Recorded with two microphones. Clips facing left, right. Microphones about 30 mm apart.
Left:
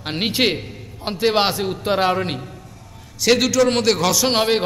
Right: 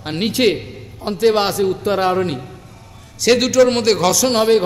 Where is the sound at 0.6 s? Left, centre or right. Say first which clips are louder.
Right 2 dB; centre.